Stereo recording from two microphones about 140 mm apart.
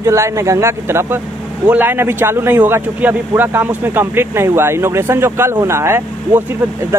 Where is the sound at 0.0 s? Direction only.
20° right (ahead or behind).